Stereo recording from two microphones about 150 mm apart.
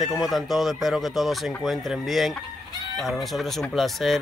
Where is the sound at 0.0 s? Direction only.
Centre (ahead or behind).